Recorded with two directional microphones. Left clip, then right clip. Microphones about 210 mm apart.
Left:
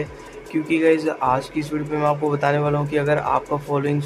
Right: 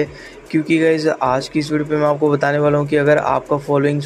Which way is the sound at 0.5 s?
20° right (ahead or behind).